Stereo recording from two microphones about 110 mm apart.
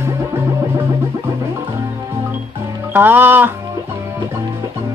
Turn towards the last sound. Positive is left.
turn(degrees=-20)  # may be behind; listen again after turning